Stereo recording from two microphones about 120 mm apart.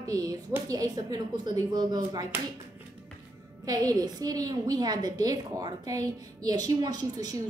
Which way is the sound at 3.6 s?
30° right (ahead or behind).